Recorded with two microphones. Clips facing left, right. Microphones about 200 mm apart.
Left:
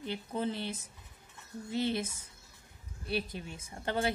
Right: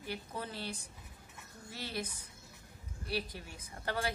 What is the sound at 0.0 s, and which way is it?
A woman's voice, 20° left (ahead or behind).